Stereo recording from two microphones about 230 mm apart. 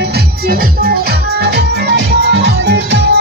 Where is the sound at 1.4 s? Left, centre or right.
Right.